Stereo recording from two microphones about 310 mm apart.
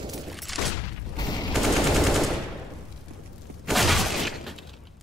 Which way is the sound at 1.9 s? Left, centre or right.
Centre.